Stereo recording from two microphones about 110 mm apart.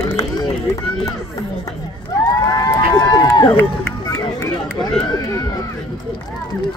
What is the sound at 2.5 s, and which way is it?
Run, 35° left (ahead or behind).